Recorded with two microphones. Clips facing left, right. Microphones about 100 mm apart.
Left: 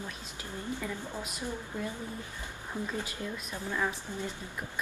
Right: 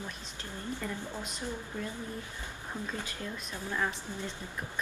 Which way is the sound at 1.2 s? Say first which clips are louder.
Left 1 dB; 5° left (ahead or behind).